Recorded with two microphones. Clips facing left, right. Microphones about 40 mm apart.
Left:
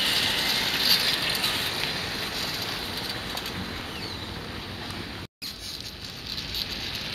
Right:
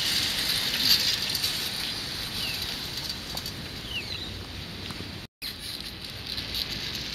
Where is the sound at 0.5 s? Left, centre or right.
Left.